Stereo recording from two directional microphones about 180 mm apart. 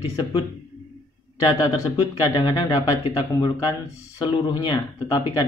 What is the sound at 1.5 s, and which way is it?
Speech, 20° left (ahead or behind).